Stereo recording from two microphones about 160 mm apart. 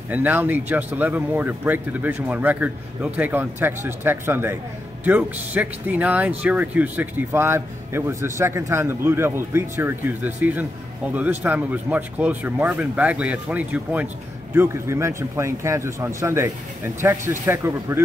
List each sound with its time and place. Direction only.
0.1 s speech: 10° right (ahead or behind)